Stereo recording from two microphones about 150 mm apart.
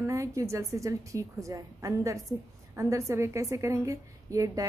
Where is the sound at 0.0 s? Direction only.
20° right (ahead or behind).